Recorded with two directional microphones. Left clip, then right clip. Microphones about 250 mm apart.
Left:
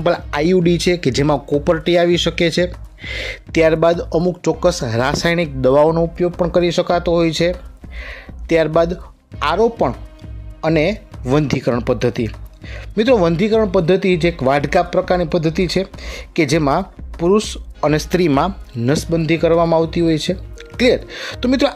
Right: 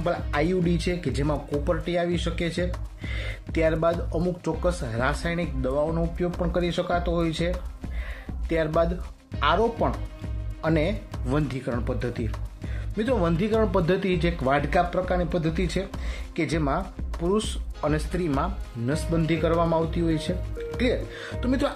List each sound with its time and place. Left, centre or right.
0.0 s speech: left